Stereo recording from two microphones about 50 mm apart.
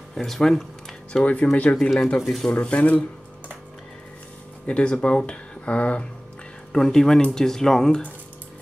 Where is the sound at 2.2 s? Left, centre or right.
Centre.